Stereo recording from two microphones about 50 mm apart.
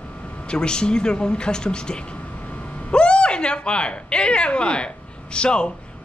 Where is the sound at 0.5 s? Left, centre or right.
Centre.